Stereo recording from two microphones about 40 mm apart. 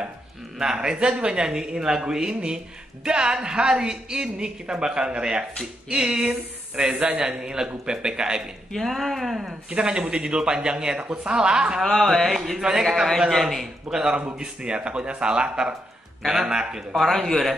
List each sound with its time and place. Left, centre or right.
0.6 s speech: centre
8.7 s speech: centre
9.5 s speech: right
11.8 s speech: centre
12.5 s speech: centre
13.8 s speech: centre
16.9 s speech: centre